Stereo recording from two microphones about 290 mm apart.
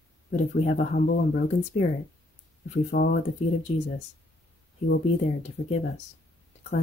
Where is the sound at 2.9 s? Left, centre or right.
Left.